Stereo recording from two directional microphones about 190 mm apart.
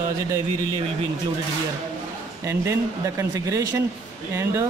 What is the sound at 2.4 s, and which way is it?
Speech, 15° right (ahead or behind).